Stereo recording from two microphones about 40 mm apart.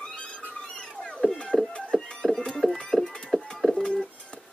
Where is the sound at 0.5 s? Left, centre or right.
Left.